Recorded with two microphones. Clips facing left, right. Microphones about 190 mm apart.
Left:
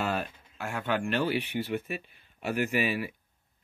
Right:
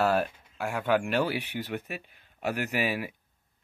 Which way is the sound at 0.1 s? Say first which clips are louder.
Right 6 dB; 10° right (ahead or behind).